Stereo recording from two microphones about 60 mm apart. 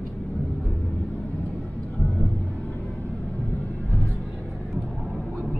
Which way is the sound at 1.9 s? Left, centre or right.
Left.